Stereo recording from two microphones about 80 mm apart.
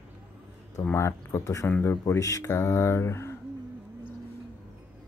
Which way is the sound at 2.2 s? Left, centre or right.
Left.